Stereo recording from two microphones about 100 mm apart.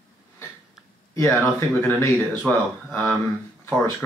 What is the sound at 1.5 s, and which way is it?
Speech, 30° left (ahead or behind).